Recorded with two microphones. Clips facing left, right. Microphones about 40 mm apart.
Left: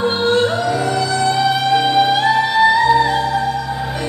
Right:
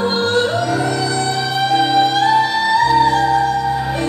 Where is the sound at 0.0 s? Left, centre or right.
Centre.